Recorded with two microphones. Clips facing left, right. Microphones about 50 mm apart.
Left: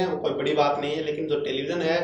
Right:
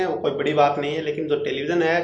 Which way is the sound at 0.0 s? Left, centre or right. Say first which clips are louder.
Right 3 dB; right.